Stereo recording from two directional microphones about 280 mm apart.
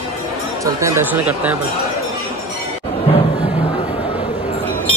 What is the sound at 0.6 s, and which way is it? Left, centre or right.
Speech, centre.